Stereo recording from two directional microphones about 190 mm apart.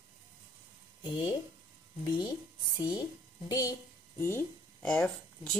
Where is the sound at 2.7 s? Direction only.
25° left (ahead or behind).